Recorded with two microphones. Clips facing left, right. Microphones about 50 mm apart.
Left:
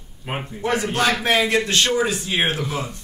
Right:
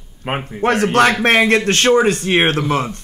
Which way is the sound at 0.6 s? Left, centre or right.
Right.